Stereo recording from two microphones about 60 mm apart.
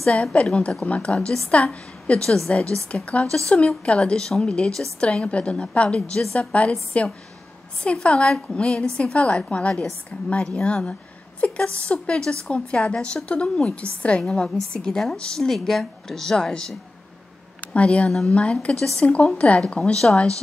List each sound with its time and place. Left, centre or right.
0.0 s a woman's voice: centre